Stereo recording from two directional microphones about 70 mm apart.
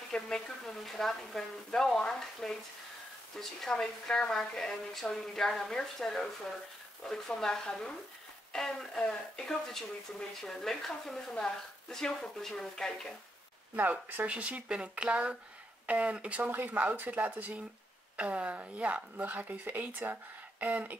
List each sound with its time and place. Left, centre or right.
0.1 s a woman's voice: centre
13.7 s speech: right